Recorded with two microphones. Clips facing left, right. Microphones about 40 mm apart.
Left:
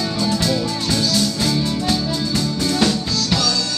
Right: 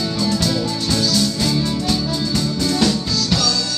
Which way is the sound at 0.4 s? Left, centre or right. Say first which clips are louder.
Even; centre.